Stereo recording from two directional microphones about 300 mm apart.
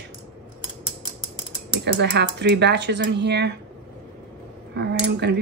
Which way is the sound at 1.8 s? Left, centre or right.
Right.